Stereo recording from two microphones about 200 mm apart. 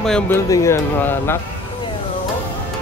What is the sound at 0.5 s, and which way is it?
Speech, 15° left (ahead or behind).